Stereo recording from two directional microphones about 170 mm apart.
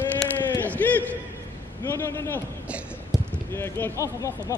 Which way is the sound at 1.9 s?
15° left (ahead or behind).